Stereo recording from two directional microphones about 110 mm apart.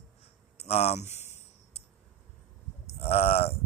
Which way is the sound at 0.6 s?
70° left (ahead or behind).